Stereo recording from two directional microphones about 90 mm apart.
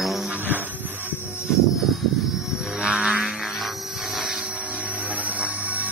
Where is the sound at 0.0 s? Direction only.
Centre (ahead or behind).